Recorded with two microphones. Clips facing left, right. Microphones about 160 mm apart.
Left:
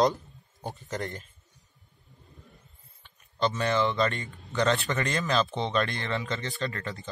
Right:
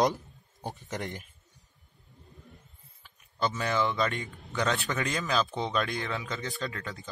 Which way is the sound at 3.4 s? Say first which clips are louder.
Left 3 dB; centre (ahead or behind).